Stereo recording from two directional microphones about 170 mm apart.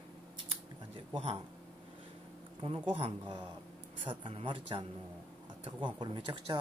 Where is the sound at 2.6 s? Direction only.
30° right (ahead or behind).